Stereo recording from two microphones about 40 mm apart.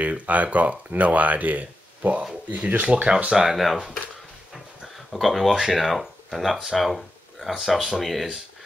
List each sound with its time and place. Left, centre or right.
0.0 s speech: right
3.3 s speech: centre
4.9 s speech: centre
8.0 s speech: centre